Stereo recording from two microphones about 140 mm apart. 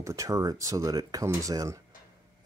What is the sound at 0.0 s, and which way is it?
Speech, 25° right (ahead or behind).